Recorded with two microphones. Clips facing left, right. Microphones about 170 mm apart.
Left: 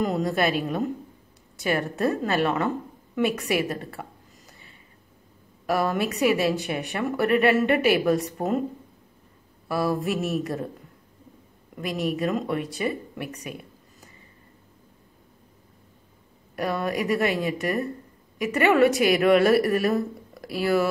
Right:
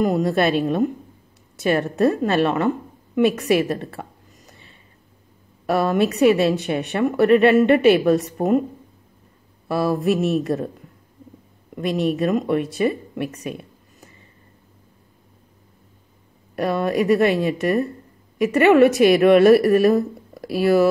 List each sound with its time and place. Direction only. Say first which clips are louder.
0.3 s speech: right 5 dB; 25° right (ahead or behind)
5.7 s speech: right 5 dB; 25° right (ahead or behind)
9.7 s speech: right 5 dB; 25° right (ahead or behind)
11.7 s speech: right 6 dB; 25° right (ahead or behind)
16.5 s speech: right 6 dB; 25° right (ahead or behind)